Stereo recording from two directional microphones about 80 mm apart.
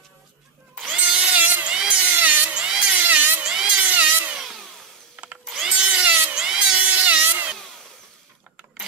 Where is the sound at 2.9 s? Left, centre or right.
Right.